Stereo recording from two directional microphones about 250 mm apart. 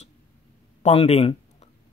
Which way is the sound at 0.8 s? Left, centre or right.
Left.